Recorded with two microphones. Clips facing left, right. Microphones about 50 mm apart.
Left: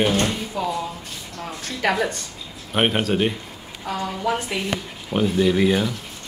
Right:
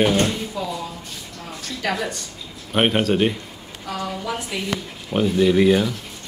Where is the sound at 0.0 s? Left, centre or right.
Centre.